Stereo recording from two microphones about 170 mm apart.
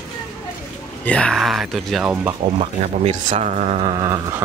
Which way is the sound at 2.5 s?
40° right (ahead or behind).